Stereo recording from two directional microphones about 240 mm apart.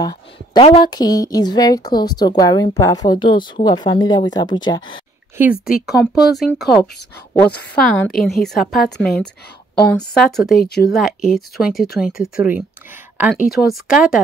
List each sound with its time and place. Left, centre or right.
0.0 s speech: centre
5.8 s a woman's voice: centre
10.6 s speech: left
10.9 s a woman's voice: centre